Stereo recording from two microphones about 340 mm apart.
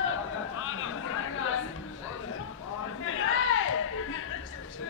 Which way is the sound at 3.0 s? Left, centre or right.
Left.